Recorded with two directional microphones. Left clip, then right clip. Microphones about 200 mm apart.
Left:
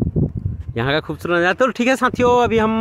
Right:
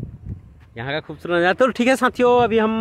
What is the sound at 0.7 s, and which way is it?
Speech, 25° left (ahead or behind).